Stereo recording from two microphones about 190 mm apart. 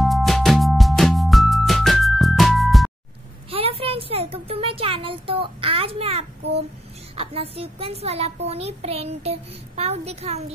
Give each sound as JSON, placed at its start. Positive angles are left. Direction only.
{"t": 0.0, "sound": "music", "side_deg": 0}
{"t": 3.4, "sound": "a sound", "side_deg": -30}
{"t": 7.2, "sound": "a child's voice", "side_deg": -30}